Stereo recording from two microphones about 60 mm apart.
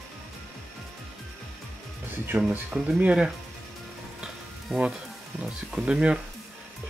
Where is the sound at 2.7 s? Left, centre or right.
Right.